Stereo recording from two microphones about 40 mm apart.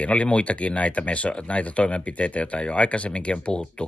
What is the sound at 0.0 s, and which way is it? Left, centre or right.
Speech, left.